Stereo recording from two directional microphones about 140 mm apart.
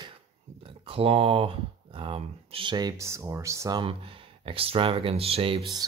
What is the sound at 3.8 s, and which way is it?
Speech, 40° right (ahead or behind).